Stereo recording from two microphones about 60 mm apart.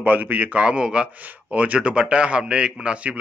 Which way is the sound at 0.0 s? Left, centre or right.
Right.